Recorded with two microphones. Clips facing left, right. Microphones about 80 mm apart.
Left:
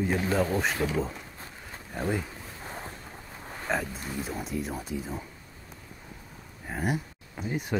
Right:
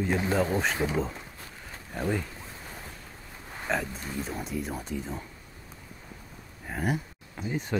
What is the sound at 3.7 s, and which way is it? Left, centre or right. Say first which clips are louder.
Speech: even; centre.